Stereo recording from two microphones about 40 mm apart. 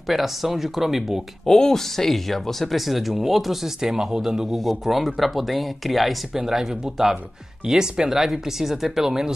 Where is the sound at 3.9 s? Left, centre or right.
Centre.